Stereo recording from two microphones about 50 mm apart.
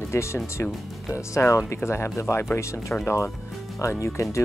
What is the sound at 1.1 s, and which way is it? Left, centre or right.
Speech, left.